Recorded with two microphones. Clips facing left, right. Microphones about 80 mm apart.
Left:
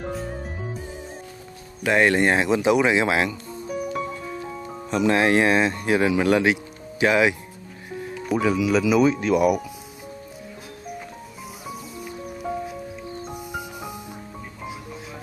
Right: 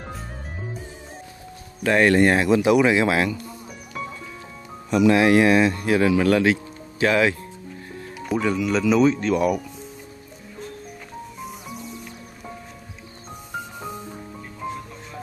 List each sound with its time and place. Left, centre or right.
1.8 s speech: centre
4.9 s speech: left; by 7.3 s centre
8.3 s speech: centre
13.5 s music: centre